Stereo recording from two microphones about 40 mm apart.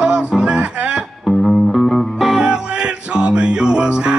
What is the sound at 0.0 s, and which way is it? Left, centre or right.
Music, right.